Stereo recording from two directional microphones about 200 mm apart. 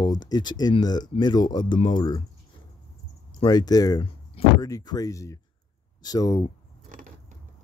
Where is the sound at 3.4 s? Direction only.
20° left (ahead or behind).